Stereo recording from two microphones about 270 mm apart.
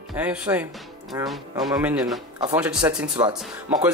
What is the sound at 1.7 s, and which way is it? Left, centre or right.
Speech, centre.